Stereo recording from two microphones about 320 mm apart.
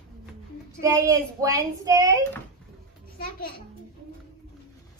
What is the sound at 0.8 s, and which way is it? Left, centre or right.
A child's voice, centre.